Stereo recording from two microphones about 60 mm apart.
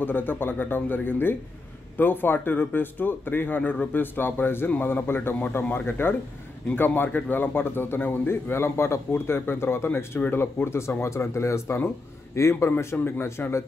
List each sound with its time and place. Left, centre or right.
0.0 s a man's voice: left
12.7 s a man's voice: left